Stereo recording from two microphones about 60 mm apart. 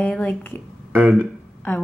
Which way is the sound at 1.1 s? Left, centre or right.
Centre.